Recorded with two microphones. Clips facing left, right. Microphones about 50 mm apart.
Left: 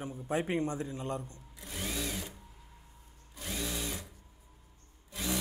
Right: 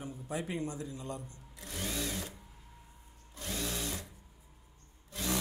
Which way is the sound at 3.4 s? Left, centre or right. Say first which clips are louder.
Even; centre.